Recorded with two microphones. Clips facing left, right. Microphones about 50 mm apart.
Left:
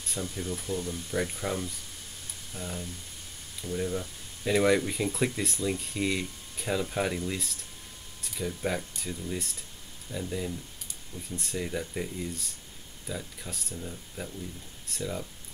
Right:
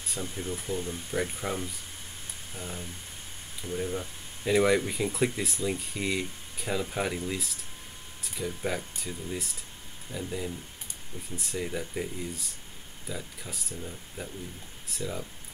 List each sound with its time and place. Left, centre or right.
0.2 s speech: right
1.1 s speech: centre
4.5 s speech: centre